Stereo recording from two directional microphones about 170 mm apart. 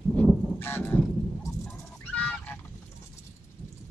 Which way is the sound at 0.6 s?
10° left (ahead or behind).